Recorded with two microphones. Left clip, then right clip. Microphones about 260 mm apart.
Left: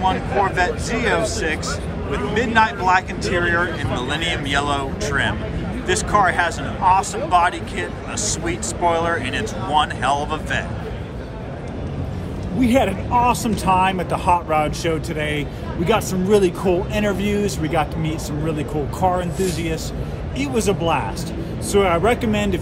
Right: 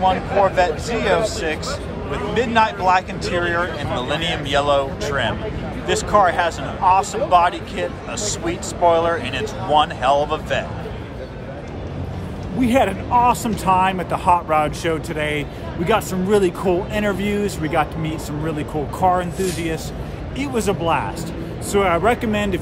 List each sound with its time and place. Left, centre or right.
0.0 s speech: centre
2.3 s speech: centre
12.5 s speech: centre